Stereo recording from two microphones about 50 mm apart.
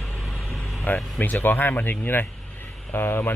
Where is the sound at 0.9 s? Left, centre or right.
Left.